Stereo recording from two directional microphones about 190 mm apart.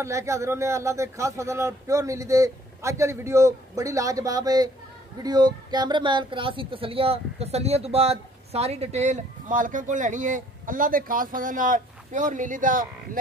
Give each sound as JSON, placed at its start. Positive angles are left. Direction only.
{"t": 0.0, "sound": "speech", "side_deg": -15}